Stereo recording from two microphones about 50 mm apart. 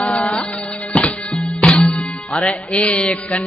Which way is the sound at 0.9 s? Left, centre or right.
Left.